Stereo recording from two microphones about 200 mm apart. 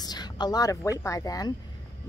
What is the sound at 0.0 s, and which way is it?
Speech, 20° left (ahead or behind).